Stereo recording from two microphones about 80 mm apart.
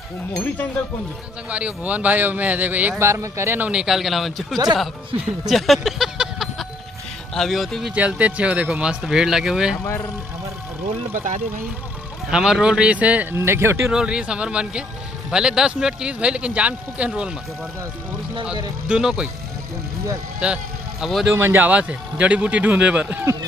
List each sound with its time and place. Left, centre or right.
1.5 s a man's voice: centre
3.0 s speech: right
3.8 s speech: centre
5.5 s a sound: centre
7.3 s speech: centre
7.9 s speech: centre
9.8 s speech: left
12.3 s speech: centre
13.4 s speech: right
13.9 s speech: centre
18.9 s speech: centre
20.3 s vehicle: centre
21.3 s a man's voice: right